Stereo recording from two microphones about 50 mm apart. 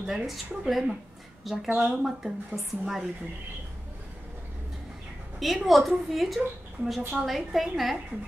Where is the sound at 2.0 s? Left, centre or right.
Centre.